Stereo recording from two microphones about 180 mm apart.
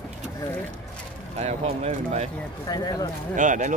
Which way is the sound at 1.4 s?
35° right (ahead or behind).